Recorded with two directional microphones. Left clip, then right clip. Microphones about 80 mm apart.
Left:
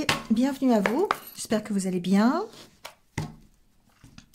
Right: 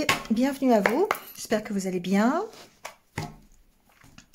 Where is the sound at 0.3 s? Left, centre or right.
Centre.